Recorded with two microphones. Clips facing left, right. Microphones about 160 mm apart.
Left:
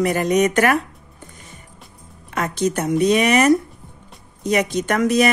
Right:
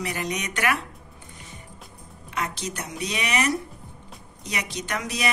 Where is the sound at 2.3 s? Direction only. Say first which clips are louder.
Left 10 dB; 50° left (ahead or behind).